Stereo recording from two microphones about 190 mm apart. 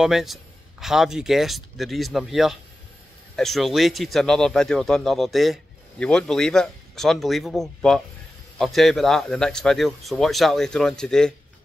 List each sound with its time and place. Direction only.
0.0 s speech: centre (ahead or behind)